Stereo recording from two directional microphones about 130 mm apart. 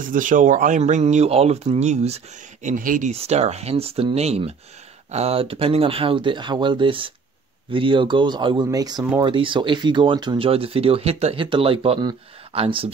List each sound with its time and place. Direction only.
0.0 s speech: 90° right; by 2.7 s 60° right (ahead or behind)
2.7 s speech: 90° right
3.1 s speech: 55° right (ahead or behind)
11.4 s speech: 40° right (ahead or behind)